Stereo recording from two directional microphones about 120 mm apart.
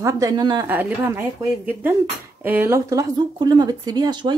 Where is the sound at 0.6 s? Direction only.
15° right (ahead or behind).